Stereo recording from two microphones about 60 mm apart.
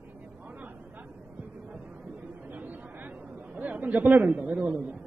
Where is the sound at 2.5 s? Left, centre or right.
Right.